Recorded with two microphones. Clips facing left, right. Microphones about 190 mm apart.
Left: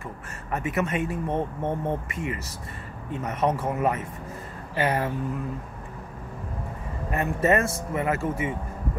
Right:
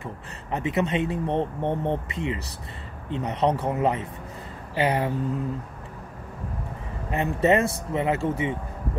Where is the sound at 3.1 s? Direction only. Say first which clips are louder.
Right 2 dB; 20° right (ahead or behind).